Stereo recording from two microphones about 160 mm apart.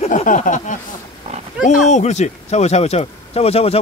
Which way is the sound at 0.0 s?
55° left (ahead or behind).